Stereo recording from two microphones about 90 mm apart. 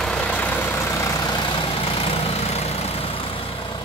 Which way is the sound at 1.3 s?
65° left (ahead or behind).